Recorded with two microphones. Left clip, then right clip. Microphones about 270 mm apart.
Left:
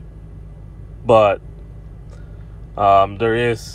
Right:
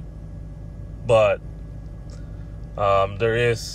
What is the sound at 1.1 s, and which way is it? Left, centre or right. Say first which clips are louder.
Speech: left 5 dB; centre.